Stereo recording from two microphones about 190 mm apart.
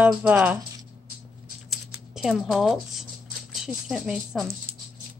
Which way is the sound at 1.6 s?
Centre (ahead or behind).